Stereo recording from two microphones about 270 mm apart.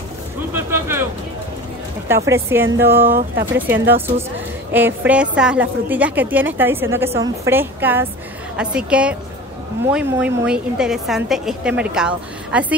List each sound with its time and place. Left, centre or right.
0.5 s vehicle: centre
2.0 s a woman's voice: centre
3.1 s speech: right
3.5 s a woman's voice: centre